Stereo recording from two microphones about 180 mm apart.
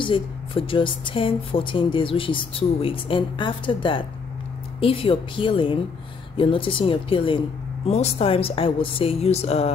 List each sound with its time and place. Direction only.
0.0 s speech: 30° left (ahead or behind)